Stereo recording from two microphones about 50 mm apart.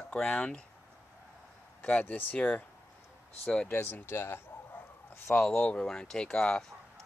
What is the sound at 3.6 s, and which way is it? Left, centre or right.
Speech, left.